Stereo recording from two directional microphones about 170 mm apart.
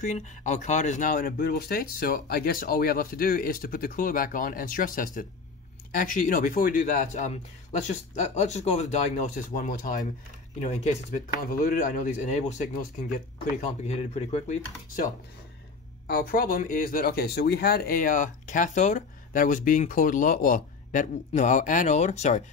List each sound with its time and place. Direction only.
0.0 s speech: 45° left (ahead or behind)
16.1 s speech: 60° left (ahead or behind); by 22.4 s 45° left (ahead or behind)